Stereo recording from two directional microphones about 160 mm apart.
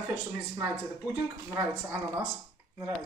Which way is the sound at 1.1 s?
10° right (ahead or behind).